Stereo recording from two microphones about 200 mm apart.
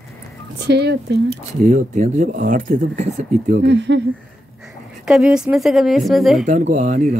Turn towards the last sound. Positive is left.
turn(degrees=-35)  # may be behind; listen again after turning